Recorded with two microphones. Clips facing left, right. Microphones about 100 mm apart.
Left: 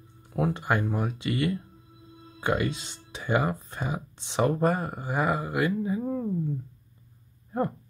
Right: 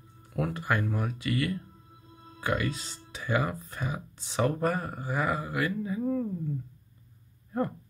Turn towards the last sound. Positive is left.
turn(degrees=20)  # may be behind; listen again after turning